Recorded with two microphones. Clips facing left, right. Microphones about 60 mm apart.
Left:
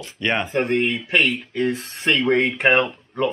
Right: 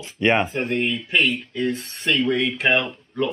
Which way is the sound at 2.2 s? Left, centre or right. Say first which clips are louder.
Left 4 dB; left.